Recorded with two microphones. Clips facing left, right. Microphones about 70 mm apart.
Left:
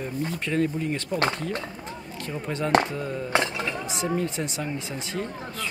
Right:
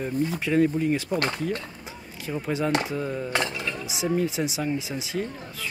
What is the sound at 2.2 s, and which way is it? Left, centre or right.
Speech, centre.